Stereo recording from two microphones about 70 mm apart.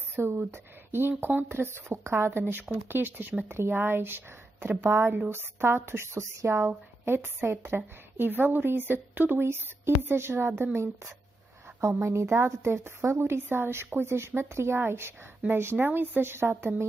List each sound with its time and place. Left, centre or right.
0.1 s a woman's voice: right
2.4 s a woman's voice: right
12.0 s a woman's voice: right